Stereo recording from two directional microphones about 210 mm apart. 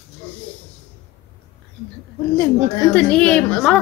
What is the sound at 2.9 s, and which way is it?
Speech, 5° left (ahead or behind).